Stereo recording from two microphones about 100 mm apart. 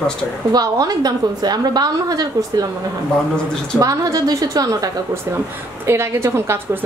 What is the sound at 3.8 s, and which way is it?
A woman's voice, 35° right (ahead or behind).